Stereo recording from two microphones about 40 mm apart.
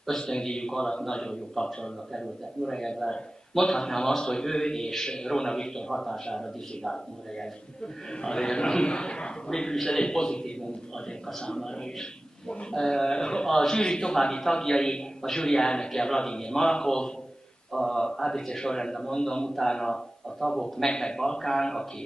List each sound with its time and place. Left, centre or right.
0.2 s a man's voice: centre